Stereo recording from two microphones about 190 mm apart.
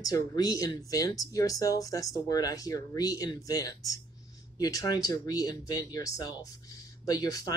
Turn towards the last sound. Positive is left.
turn(degrees=20)  # may be behind; listen again after turning